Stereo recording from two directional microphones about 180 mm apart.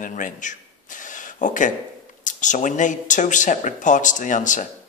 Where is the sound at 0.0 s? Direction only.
45° left (ahead or behind).